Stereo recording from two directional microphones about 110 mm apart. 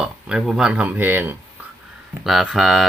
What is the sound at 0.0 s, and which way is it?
Speech, 5° right (ahead or behind).